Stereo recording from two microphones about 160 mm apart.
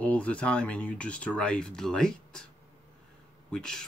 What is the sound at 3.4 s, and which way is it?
Speech, 5° left (ahead or behind).